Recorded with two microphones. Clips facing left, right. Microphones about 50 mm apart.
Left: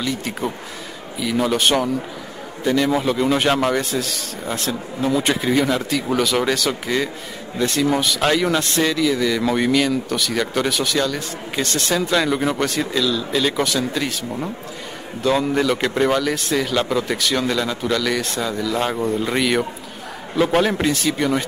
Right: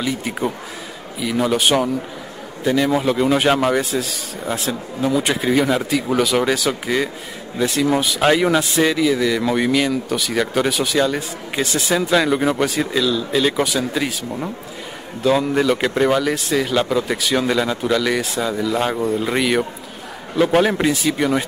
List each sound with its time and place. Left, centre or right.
0.0 s speech: centre